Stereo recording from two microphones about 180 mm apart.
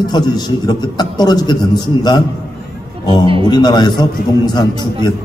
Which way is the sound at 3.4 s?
25° left (ahead or behind).